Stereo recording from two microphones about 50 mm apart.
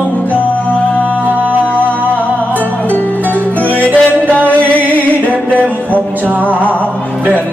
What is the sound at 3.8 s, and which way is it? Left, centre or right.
Music, left.